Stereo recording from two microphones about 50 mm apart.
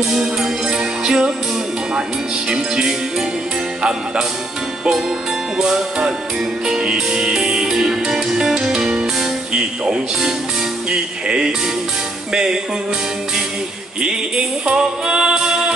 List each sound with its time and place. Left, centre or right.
0.1 s music: centre
2.5 s music: centre
5.6 s music: centre
14.0 s music: centre